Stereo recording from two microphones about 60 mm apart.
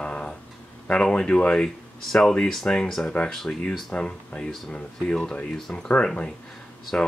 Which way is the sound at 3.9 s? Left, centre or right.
Centre.